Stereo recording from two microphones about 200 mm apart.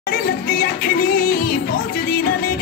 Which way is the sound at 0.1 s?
45° left (ahead or behind).